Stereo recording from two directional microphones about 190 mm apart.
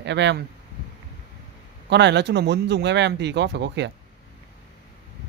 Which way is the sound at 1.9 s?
65° right (ahead or behind).